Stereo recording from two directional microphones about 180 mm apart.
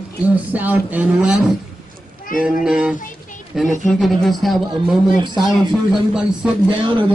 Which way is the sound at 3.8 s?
Centre (ahead or behind).